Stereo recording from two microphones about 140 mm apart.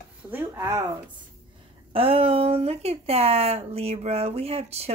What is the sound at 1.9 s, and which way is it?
Speech, 40° right (ahead or behind).